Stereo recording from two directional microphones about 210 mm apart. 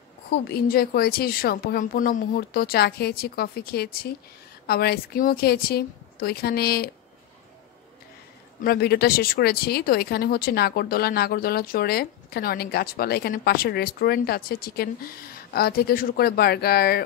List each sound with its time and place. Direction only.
0.3 s speech: 45° left (ahead or behind)
8.6 s speech: 50° left (ahead or behind)